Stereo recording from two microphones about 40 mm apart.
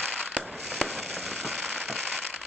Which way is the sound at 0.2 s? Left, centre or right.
Right.